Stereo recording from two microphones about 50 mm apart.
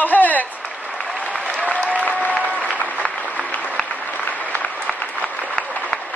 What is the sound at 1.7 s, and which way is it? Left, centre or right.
Applause, left.